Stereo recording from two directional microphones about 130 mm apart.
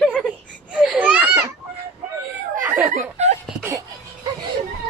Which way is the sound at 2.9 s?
65° right (ahead or behind).